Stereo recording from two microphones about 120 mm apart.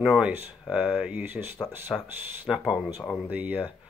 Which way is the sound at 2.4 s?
5° right (ahead or behind).